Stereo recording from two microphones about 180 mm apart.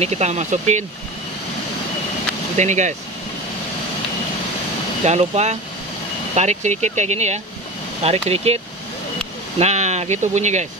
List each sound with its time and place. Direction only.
0.0 s speech: 40° right (ahead or behind)
2.5 s speech: 40° right (ahead or behind)
5.0 s speech: 40° right (ahead or behind)
9.6 s speech: 40° right (ahead or behind)